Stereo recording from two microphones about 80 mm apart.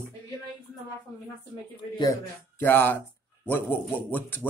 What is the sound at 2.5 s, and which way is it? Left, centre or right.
A man's voice, left.